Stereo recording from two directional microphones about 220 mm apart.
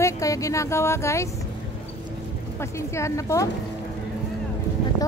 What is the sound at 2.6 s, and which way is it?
Speech, 10° left (ahead or behind).